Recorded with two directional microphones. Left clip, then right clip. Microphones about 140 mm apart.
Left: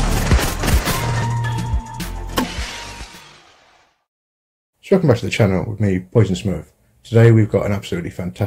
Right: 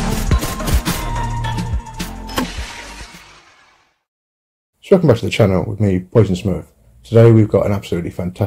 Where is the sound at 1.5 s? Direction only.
Centre (ahead or behind).